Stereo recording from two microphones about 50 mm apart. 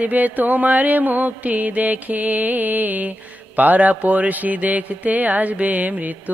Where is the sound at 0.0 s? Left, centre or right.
Right.